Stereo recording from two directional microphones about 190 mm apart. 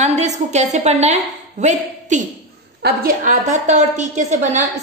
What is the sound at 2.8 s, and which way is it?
A woman's voice, 55° right (ahead or behind).